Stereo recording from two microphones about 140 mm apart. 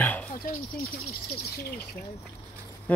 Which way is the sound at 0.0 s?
10° left (ahead or behind).